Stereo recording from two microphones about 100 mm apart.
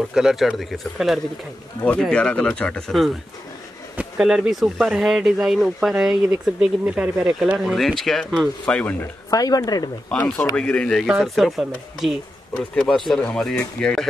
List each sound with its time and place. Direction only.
0.1 s speech: 5° right (ahead or behind)
1.9 s speech: 10° left (ahead or behind)
3.9 s speech: 10° right (ahead or behind); by 8.9 s 10° left (ahead or behind)
9.3 s speech: 40° left (ahead or behind)
10.5 s speech: 10° left (ahead or behind)